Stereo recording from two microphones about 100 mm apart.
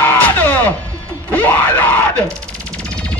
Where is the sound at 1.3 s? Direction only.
15° left (ahead or behind).